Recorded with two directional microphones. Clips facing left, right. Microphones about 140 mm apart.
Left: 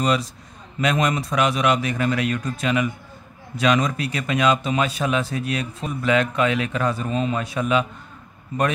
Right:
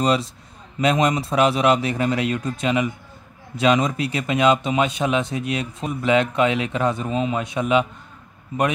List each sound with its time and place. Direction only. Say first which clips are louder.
0.0 s speech: right 2 dB; 30° right (ahead or behind)
7.1 s a man's voice: right 1 dB; 10° right (ahead or behind)
7.4 s speech: right 2 dB; 20° right (ahead or behind)
8.5 s a man's voice: right 1 dB; 10° right (ahead or behind)